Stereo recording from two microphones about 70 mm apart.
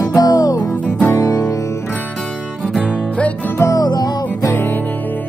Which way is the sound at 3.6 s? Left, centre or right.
Left.